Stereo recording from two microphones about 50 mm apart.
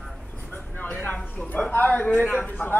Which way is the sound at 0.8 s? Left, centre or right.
Left.